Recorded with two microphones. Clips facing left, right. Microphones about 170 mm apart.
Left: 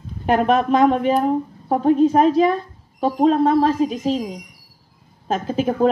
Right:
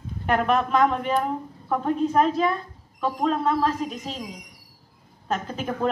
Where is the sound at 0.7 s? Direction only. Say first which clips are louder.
Left 6 dB; 30° left (ahead or behind).